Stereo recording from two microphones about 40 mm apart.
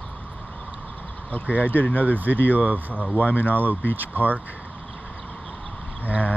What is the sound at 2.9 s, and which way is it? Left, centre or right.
Speech, left.